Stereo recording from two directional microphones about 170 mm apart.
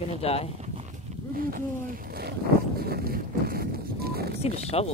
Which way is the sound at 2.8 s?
65° right (ahead or behind).